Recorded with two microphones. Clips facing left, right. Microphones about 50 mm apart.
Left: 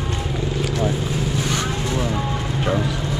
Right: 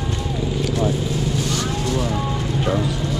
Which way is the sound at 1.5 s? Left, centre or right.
Left.